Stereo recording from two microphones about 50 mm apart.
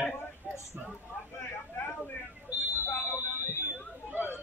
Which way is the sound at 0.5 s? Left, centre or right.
Centre.